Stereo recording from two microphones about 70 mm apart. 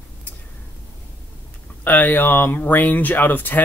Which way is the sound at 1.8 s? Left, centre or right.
Left.